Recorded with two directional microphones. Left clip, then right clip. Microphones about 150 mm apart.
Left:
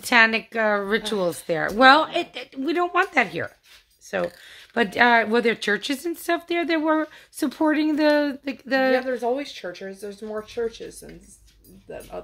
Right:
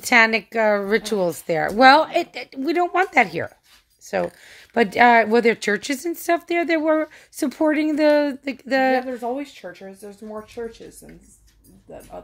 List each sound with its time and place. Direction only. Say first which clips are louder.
0.0 s speech: right 2 dB; 30° right (ahead or behind)
9.0 s speech: left 2 dB; 10° left (ahead or behind)